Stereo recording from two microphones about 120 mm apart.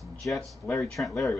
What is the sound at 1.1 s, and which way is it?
Speech, 25° left (ahead or behind).